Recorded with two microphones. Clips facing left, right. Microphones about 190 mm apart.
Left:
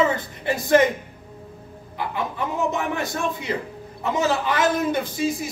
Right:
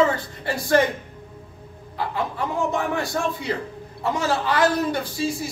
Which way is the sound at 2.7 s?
20° left (ahead or behind).